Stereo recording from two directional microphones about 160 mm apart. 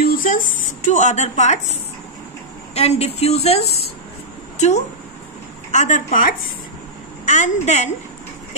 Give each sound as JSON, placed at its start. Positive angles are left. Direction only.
{"t": 0.0, "sound": "a woman's voice", "side_deg": 60}